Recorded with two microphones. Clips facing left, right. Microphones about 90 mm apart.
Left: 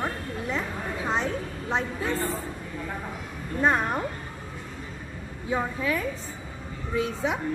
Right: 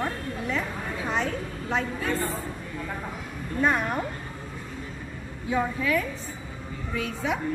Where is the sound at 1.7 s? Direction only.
25° left (ahead or behind).